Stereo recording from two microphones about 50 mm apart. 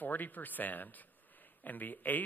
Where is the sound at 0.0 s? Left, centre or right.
Left.